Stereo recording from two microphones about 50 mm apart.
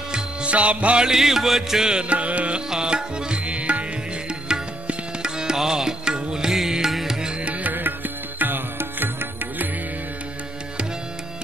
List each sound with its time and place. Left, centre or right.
0.1 s music: right
1.0 s music: centre
7.5 s music: right